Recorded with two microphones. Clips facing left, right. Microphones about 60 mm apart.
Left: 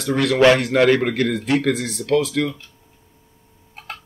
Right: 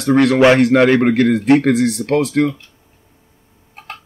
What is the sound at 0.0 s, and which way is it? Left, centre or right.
Speech, right.